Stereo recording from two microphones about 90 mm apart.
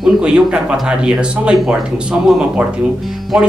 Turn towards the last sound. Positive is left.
turn(degrees=-15)  # may be behind; listen again after turning